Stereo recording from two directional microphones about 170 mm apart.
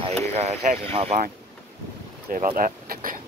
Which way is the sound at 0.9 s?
40° right (ahead or behind).